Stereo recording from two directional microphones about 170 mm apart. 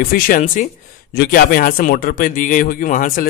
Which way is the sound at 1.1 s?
65° left (ahead or behind).